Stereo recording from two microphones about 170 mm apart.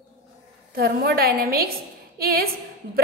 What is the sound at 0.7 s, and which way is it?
A woman's voice, 65° right (ahead or behind).